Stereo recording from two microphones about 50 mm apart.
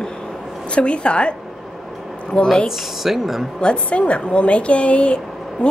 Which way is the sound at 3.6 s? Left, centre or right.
Left.